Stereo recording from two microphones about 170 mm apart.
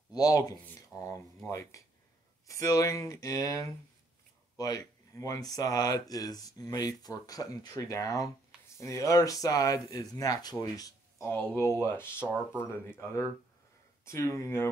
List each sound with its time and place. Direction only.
0.1 s speech: 20° left (ahead or behind)